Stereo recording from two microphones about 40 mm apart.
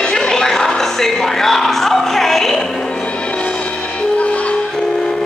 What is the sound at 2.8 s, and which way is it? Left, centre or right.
Music, left.